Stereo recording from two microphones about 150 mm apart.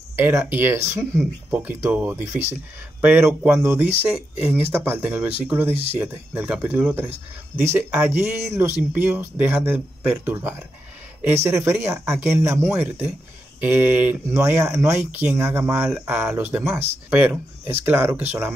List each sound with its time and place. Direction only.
0.1 s speech: 15° right (ahead or behind)